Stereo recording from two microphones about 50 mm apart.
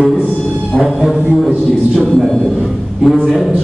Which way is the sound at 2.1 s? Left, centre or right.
Centre.